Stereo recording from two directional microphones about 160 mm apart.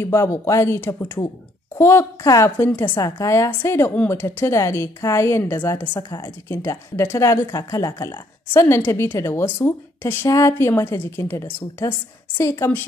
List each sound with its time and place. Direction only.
0.0 s speech: 15° left (ahead or behind)